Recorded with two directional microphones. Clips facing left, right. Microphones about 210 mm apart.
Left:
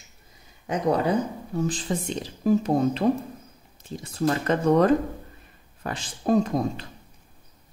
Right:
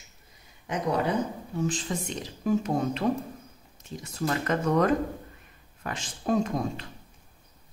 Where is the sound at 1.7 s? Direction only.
35° left (ahead or behind).